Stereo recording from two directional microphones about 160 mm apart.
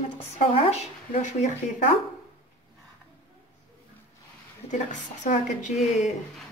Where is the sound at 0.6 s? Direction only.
45° left (ahead or behind).